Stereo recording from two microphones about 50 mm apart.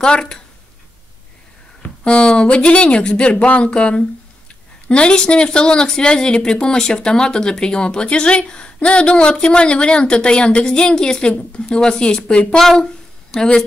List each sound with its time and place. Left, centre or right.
0.0 s speech: centre
1.8 s speech: left